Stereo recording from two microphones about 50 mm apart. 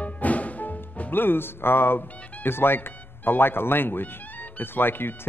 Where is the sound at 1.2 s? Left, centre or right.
Left.